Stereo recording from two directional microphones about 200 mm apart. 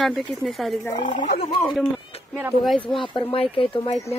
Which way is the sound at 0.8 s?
20° left (ahead or behind).